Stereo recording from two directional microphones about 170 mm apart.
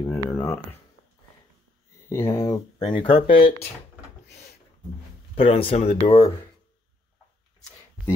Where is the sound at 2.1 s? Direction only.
15° left (ahead or behind); by 3.5 s 30° left (ahead or behind).